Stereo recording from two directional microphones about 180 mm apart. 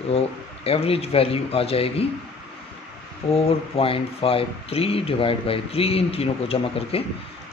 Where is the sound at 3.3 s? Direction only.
30° left (ahead or behind).